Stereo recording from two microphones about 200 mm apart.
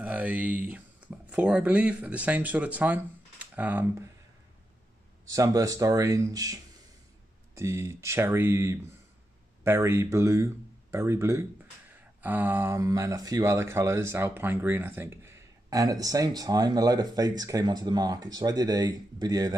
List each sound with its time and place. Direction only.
0.0 s speech: 5° right (ahead or behind)
5.2 s speech: 20° right (ahead or behind)